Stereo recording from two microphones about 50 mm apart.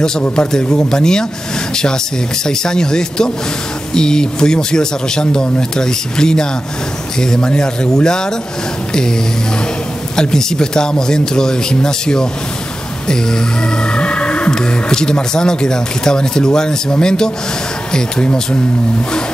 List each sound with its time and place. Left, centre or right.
0.5 s speech: centre
2.4 s speech: centre
10.1 s speech: centre
13.9 s speech: left